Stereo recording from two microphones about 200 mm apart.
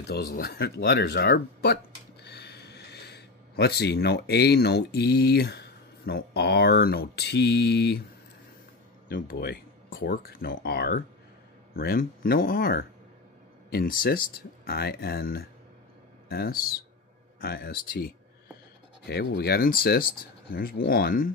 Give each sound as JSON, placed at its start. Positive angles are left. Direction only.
{"t": 0.1, "sound": "speech", "side_deg": 50}
{"t": 9.1, "sound": "speech", "side_deg": 45}